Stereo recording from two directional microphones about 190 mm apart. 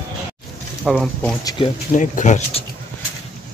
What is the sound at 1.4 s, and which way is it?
Speech, 25° left (ahead or behind).